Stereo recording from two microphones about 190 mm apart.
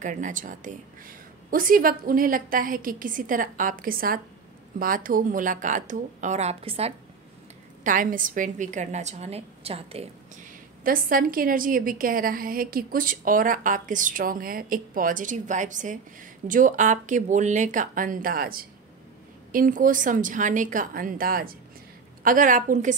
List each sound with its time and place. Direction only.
0.0 s a woman's voice: 40° right (ahead or behind)
7.8 s a woman's voice: 45° right (ahead or behind)